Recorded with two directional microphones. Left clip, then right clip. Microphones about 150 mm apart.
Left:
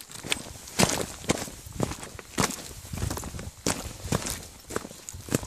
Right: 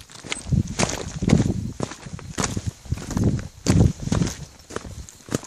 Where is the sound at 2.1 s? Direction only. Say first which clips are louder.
Right 1 dB; 20° left (ahead or behind).